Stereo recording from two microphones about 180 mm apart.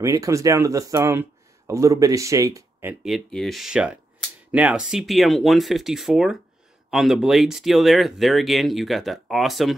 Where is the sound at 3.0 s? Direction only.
Centre (ahead or behind).